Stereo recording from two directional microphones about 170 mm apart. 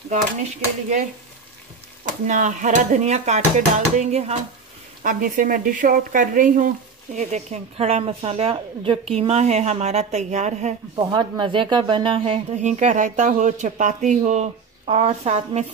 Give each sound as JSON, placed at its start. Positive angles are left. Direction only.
{"t": 0.1, "sound": "speech", "side_deg": -45}
{"t": 2.2, "sound": "a woman's voice", "side_deg": -50}
{"t": 11.0, "sound": "speech", "side_deg": -25}
{"t": 12.6, "sound": "speech", "side_deg": -45}